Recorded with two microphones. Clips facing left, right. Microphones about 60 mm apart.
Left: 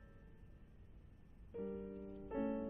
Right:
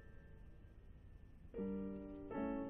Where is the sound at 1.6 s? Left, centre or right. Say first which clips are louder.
Right 1 dB; centre.